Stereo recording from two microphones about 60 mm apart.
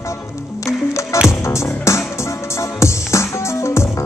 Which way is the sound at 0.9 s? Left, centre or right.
Left.